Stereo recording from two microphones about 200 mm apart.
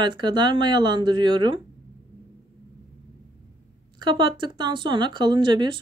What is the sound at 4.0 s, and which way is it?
Speech, 25° right (ahead or behind).